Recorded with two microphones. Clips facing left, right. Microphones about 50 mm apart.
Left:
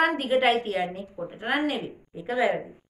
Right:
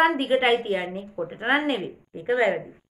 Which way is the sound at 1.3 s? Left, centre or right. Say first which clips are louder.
Right 3 dB; right.